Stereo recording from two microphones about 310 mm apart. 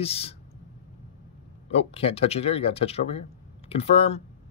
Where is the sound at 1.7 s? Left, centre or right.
Centre.